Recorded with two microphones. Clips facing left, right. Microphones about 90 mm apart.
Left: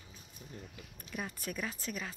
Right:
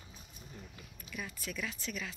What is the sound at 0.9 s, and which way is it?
Speech, 55° left (ahead or behind).